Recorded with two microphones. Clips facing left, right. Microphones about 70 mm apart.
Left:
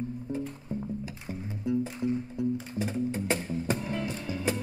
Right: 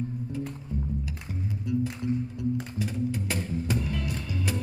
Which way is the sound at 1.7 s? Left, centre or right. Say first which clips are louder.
Even; left.